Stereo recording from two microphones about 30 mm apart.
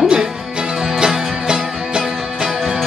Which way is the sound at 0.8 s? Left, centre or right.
Right.